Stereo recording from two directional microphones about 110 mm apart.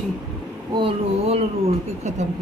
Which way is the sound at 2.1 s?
90° right.